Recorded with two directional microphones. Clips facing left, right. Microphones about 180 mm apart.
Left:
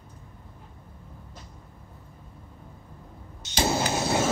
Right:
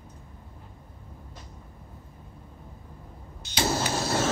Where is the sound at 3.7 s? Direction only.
20° left (ahead or behind).